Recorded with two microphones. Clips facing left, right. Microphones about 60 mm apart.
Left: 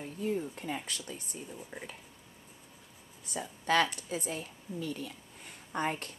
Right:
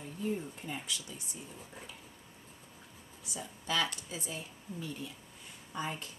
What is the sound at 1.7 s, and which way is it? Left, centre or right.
Speech, left.